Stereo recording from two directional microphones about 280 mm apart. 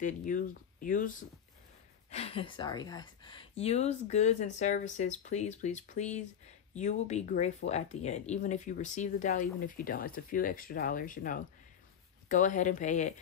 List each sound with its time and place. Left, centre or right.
0.0 s speech: left